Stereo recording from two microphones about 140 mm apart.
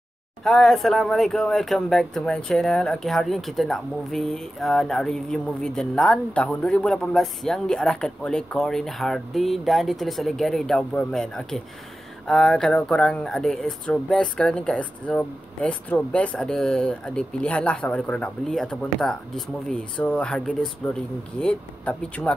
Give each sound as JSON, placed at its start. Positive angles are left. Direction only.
{"t": 0.4, "sound": "speech", "side_deg": 0}